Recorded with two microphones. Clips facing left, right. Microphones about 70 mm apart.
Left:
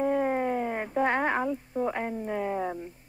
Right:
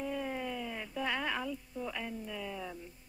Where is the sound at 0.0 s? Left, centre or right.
Left.